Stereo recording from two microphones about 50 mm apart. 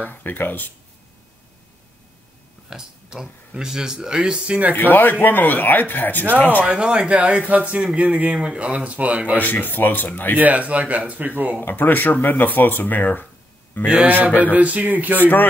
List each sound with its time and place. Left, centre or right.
0.0 s speech: left
2.7 s speech: centre
4.7 s speech: left
6.7 s speech: centre
9.3 s speech: left
10.3 s speech: right
11.6 s speech: left
14.0 s speech: right